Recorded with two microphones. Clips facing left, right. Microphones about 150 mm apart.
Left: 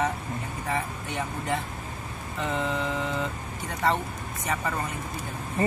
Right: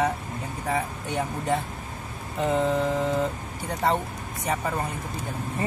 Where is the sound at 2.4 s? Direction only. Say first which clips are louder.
Right 6 dB; 40° right (ahead or behind).